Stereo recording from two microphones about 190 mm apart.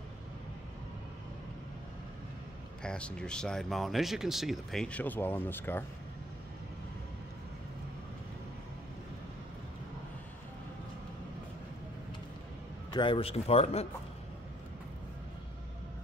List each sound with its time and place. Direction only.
2.8 s speech: 5° left (ahead or behind)
12.9 s speech: 25° left (ahead or behind)